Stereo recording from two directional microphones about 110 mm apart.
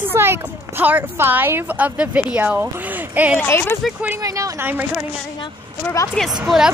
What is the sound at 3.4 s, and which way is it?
Speech, 20° left (ahead or behind).